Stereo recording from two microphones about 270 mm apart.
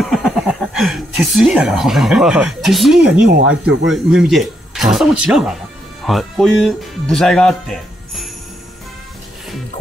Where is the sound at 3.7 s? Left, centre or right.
Right.